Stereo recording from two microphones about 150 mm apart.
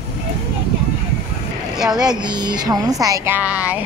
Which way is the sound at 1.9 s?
30° right (ahead or behind).